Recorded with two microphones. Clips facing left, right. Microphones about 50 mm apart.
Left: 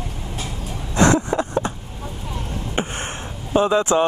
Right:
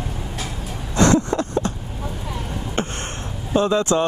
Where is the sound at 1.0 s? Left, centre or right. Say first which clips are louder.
Even; centre.